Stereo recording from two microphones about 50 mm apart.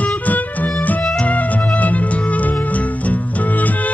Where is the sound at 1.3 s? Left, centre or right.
Left.